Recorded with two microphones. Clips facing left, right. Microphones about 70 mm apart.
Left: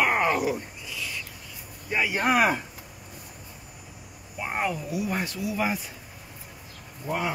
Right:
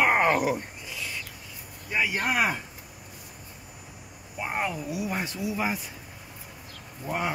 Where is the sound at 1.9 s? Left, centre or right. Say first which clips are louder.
Left 1 dB; centre.